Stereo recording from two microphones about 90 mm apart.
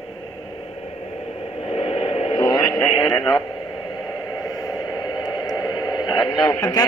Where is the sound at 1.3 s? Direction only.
90° left.